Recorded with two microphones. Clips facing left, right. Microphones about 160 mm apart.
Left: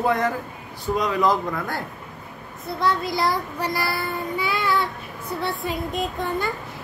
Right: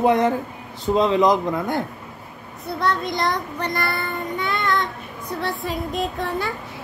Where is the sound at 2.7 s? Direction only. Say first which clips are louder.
Even; centre (ahead or behind).